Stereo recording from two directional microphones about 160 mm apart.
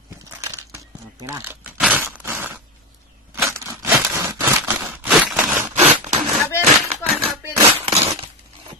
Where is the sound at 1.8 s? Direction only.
10° right (ahead or behind).